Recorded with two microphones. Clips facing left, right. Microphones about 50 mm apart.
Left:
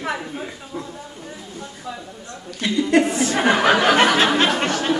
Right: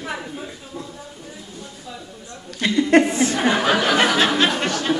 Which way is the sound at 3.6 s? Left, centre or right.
Left.